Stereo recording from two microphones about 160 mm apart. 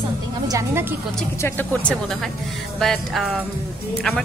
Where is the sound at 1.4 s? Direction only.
15° left (ahead or behind).